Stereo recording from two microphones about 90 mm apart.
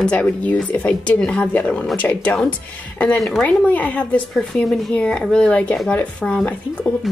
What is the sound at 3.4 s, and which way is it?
Speech, 15° left (ahead or behind).